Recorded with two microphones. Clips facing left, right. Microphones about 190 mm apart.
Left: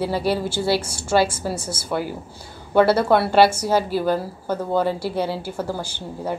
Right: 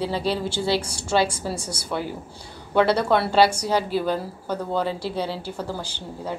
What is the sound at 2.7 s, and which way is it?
A woman's voice, 5° left (ahead or behind).